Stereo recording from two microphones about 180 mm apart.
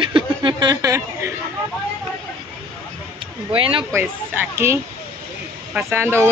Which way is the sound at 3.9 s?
10° right (ahead or behind).